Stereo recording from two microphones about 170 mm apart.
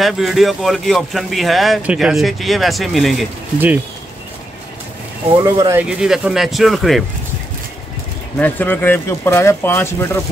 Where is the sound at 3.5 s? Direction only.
10° right (ahead or behind).